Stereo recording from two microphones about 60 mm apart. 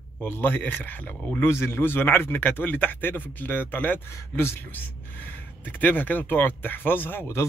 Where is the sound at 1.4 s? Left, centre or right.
Left.